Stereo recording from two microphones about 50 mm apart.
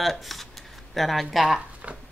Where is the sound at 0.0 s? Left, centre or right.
Centre.